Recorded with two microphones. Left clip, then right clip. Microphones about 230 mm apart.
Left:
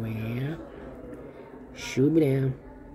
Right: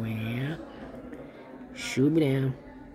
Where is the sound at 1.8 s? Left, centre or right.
Centre.